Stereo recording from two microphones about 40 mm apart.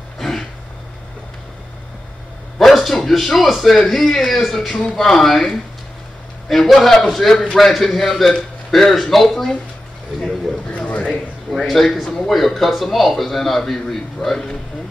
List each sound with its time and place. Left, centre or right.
0.2 s throat clearing: centre
2.6 s speech: centre
10.9 s a sound: left
11.5 s speech: centre